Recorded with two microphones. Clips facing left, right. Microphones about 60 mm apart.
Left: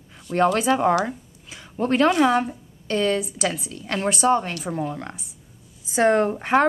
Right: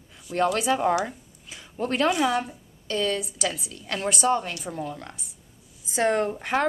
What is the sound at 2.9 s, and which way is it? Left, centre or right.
A woman's voice, left.